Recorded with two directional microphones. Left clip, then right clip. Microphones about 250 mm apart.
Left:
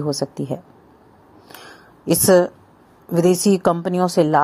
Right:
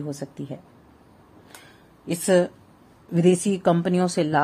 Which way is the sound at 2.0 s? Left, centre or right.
Centre.